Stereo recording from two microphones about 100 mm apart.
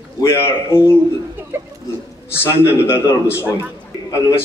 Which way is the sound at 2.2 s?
25° left (ahead or behind).